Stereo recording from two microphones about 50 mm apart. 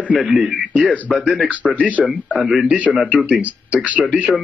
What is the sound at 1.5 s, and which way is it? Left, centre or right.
Speech, right.